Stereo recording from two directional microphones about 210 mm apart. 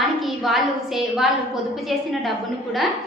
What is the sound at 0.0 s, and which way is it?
A woman's voice, centre (ahead or behind).